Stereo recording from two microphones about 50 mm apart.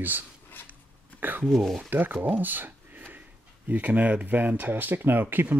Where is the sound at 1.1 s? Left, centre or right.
Right.